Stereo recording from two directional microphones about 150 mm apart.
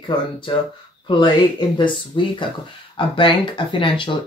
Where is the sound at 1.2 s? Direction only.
30° left (ahead or behind).